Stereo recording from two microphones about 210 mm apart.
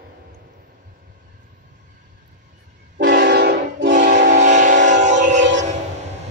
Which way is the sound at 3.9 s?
40° right (ahead or behind).